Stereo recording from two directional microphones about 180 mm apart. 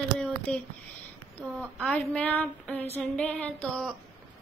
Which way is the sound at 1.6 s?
Centre (ahead or behind).